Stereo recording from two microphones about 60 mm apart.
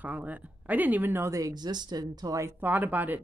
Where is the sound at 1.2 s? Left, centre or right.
Right.